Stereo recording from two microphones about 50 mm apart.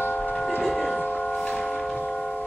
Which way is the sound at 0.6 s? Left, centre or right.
Centre.